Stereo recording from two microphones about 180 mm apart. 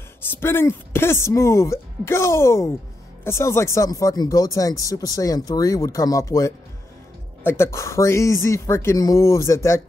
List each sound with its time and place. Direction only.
0.2 s speech: 15° left (ahead or behind)